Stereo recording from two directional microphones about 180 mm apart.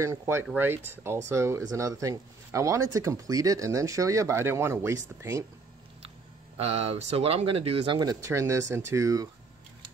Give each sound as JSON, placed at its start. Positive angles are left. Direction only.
{"t": 0.0, "sound": "speech", "side_deg": -15}
{"t": 6.5, "sound": "speech", "side_deg": -35}